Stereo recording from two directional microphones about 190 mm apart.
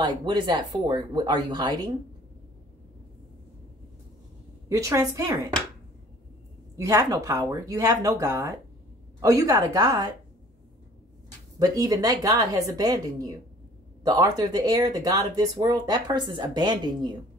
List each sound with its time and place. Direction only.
0.0 s speech: 25° right (ahead or behind)
4.6 s speech: 15° right (ahead or behind)
6.8 s speech: 15° right (ahead or behind)
11.5 s speech: 20° right (ahead or behind)